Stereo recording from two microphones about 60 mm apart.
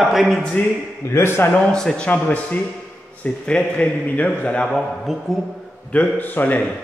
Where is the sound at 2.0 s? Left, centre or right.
Left.